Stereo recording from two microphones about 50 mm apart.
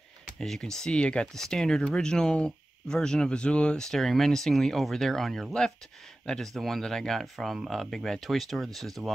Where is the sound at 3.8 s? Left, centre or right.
Centre.